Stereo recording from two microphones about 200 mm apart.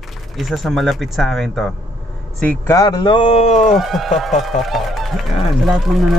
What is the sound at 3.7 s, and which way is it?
Speech, centre (ahead or behind).